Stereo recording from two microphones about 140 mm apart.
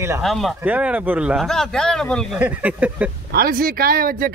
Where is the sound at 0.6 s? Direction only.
10° right (ahead or behind).